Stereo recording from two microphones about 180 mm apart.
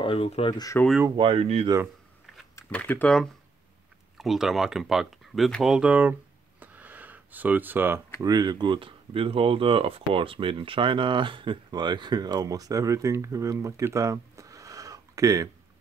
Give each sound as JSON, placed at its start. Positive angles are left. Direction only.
{"t": 0.0, "sound": "speech", "side_deg": 30}
{"t": 1.1, "sound": "speech", "side_deg": -30}
{"t": 2.5, "sound": "speech", "side_deg": 10}
{"t": 6.6, "sound": "a sound", "side_deg": -10}
{"t": 8.2, "sound": "speech", "side_deg": -20}